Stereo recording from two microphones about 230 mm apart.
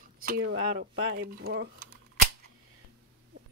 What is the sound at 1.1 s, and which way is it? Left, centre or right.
Speech, right.